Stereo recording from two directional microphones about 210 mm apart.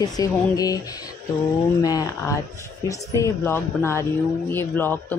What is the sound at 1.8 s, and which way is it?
Speech, 20° left (ahead or behind).